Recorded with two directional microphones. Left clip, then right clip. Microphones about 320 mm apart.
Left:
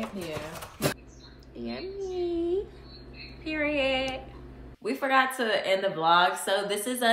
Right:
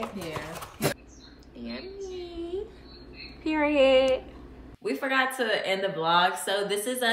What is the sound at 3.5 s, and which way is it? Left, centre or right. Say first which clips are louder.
Speech: right 6 dB; centre.